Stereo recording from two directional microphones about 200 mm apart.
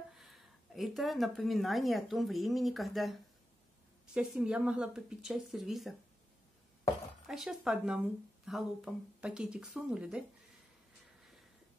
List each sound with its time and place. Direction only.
0.1 s a woman's voice: centre (ahead or behind)
7.2 s speech: centre (ahead or behind)